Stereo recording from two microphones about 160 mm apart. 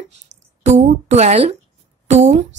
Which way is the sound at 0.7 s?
45° right (ahead or behind).